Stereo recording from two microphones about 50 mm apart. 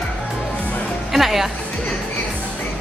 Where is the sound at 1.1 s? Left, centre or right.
Centre.